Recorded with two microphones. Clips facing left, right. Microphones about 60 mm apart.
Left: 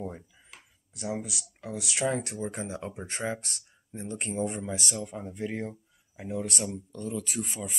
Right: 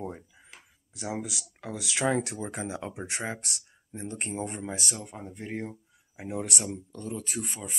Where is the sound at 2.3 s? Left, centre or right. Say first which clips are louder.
Even; right.